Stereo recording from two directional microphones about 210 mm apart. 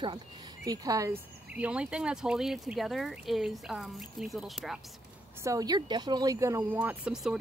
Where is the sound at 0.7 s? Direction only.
15° right (ahead or behind); by 4.7 s centre (ahead or behind).